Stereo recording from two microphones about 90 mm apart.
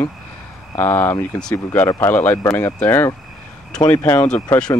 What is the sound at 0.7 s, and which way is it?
Speech, 20° left (ahead or behind).